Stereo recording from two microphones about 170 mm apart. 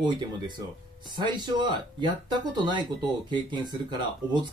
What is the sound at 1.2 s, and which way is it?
Speech, 25° right (ahead or behind).